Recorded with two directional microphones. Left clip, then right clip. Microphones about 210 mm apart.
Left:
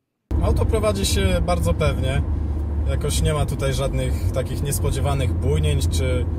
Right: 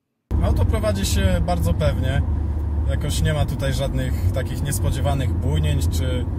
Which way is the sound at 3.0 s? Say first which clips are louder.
Left 2 dB; 25° left (ahead or behind).